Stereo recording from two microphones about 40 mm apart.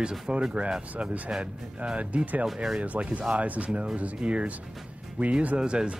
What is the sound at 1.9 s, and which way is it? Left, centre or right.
Speech, right.